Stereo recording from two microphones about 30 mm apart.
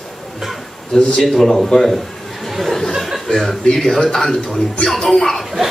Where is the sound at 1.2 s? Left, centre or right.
Centre.